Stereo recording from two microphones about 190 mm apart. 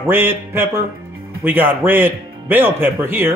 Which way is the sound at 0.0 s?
10° right (ahead or behind).